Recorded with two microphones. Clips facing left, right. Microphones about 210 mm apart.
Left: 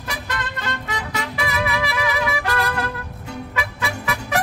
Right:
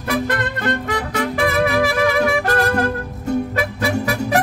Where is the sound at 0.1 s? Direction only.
55° right (ahead or behind).